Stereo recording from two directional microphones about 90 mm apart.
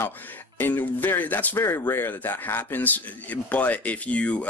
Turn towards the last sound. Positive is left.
turn(degrees=15)  # may be behind; listen again after turning